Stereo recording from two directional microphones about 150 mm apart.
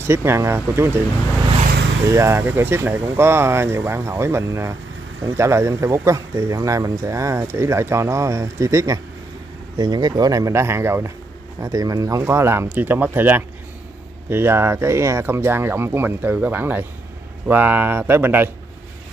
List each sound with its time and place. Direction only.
0.0 s speech: 15° right (ahead or behind)
2.0 s speech: 20° right (ahead or behind)